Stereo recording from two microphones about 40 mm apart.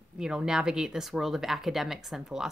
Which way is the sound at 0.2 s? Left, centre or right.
Centre.